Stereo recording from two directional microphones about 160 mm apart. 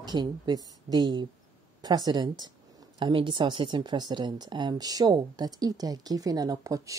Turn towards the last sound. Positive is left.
turn(degrees=-20)  # may be behind; listen again after turning